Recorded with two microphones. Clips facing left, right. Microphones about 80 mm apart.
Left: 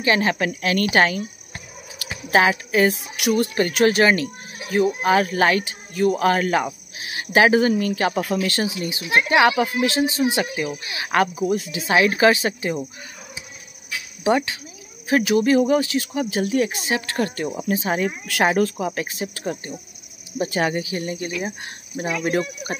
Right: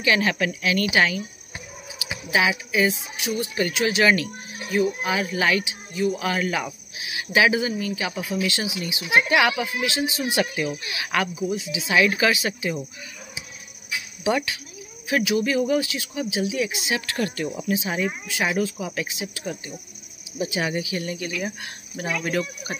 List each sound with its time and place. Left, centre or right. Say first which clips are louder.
0.0 s speech: left 2 dB; left
2.0 s a sound: even; left
2.3 s speech: left 4 dB; left
3.2 s speech: left 7 dB; left; by 10.9 s centre
10.9 s speech: left 5 dB; left
11.4 s speech: left 4 dB; left
12.0 s speech: left 4 dB; left
14.2 s speech: left 4 dB; left
18.2 s speech: left 6 dB; left
18.5 s speech: left 5 dB; left
22.3 s speech: left 3 dB; left